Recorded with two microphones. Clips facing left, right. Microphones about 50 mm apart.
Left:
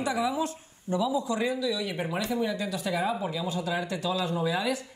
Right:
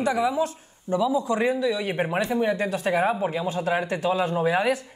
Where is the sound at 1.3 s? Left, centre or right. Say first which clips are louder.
Right 5 dB; right.